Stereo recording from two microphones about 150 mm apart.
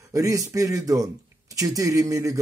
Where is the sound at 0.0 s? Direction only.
20° right (ahead or behind).